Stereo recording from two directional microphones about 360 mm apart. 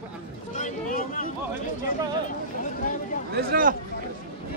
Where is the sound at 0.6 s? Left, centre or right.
Left.